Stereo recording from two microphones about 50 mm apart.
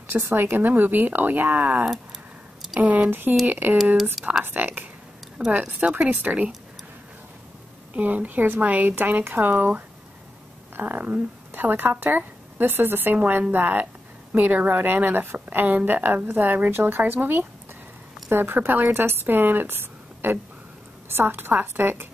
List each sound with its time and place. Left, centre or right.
0.3 s speech: right
3.9 s speech: centre
4.5 s speech: right
5.5 s a woman's voice: right
7.9 s a woman's voice: right
18.9 s a woman's voice: right